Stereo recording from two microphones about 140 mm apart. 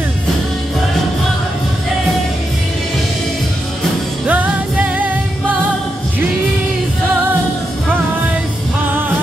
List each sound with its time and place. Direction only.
4.3 s music: 10° right (ahead or behind)